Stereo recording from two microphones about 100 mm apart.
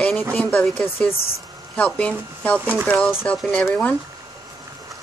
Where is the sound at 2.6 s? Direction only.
15° right (ahead or behind).